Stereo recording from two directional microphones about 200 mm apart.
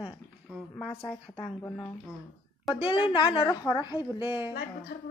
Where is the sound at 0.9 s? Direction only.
10° left (ahead or behind).